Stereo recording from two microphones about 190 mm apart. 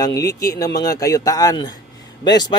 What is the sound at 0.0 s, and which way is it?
A man's voice, 15° left (ahead or behind).